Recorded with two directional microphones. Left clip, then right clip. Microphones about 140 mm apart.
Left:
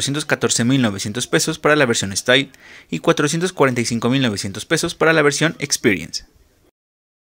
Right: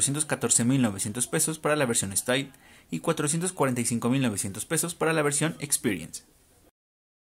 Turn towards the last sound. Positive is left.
turn(degrees=35)  # may be behind; listen again after turning